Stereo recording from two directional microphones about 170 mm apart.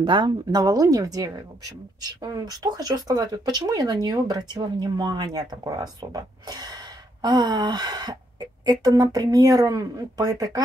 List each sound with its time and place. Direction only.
0.0 s speech: 25° right (ahead or behind)